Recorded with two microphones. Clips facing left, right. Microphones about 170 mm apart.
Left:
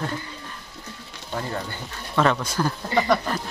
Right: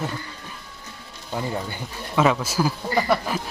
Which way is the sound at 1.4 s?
10° right (ahead or behind).